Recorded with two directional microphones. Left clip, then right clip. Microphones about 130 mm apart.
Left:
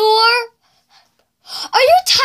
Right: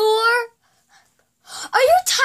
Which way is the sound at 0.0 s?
Centre (ahead or behind).